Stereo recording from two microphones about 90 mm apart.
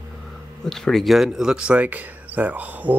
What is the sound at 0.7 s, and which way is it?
Speech, 5° left (ahead or behind).